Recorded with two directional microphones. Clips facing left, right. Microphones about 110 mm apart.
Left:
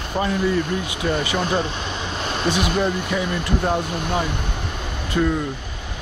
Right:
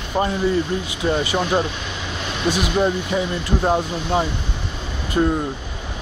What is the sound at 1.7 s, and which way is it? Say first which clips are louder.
Speech: left 2 dB; 35° left (ahead or behind).